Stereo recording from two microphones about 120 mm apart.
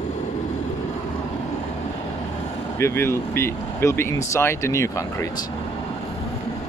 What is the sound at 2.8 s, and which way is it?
Speech, 20° left (ahead or behind).